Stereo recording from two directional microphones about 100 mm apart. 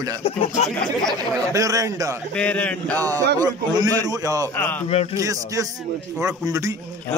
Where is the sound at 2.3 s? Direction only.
10° left (ahead or behind).